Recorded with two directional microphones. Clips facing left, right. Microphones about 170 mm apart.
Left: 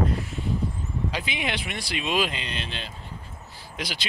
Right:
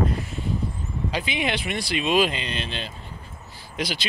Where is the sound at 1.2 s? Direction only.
5° left (ahead or behind).